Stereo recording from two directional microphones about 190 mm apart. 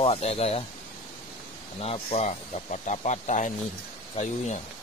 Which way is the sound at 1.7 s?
30° left (ahead or behind).